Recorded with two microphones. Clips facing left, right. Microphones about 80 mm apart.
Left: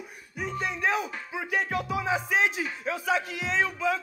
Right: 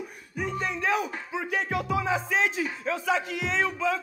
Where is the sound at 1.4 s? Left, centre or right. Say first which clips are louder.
Even; centre.